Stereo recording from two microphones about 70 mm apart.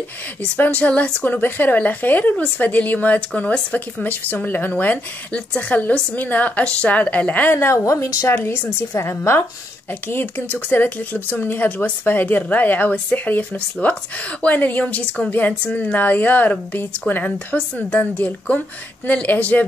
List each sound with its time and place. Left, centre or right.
0.4 s speech: left
2.3 s a woman's voice: centre
7.5 s a woman's voice: left
8.5 s a woman's voice: left